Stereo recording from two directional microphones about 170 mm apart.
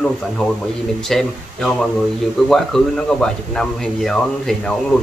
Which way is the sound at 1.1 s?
5° left (ahead or behind).